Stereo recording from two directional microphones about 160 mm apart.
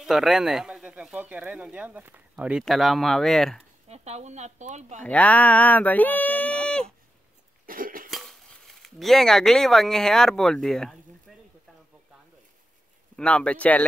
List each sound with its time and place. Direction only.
0.0 s speech: centre (ahead or behind)
3.9 s speech: 45° right (ahead or behind)
5.0 s speech: 10° left (ahead or behind)
7.6 s cough: 60° right (ahead or behind)
8.1 s cutlery: centre (ahead or behind)
13.1 s speech: 5° left (ahead or behind)